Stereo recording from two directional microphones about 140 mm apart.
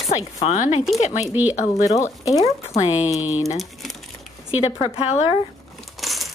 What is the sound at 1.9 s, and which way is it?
Speech, 25° left (ahead or behind).